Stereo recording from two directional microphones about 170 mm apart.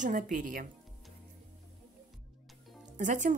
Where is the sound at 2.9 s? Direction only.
50° right (ahead or behind).